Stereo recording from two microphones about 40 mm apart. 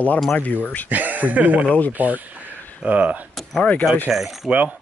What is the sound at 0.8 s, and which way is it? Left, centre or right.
Speech, right.